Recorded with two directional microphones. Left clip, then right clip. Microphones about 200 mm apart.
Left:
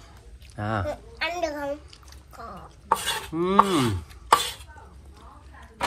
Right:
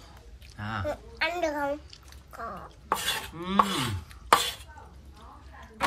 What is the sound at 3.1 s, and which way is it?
Stir, centre (ahead or behind).